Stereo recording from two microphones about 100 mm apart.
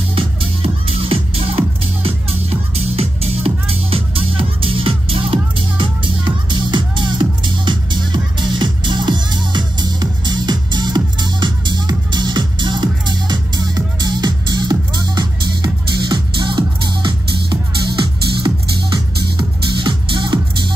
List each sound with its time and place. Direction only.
0.1 s music: 65° right (ahead or behind)